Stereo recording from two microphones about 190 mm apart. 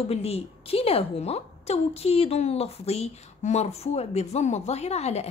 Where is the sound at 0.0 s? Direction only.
30° left (ahead or behind).